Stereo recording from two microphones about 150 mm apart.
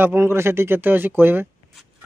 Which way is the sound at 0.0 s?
15° right (ahead or behind).